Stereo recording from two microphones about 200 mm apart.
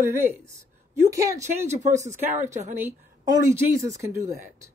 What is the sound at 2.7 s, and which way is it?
Speech, 10° right (ahead or behind).